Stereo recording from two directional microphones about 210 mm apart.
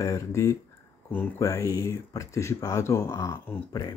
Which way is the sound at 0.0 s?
15° left (ahead or behind).